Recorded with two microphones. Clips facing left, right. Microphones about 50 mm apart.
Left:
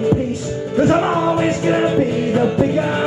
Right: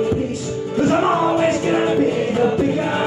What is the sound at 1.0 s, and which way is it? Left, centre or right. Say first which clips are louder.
Music: even; centre.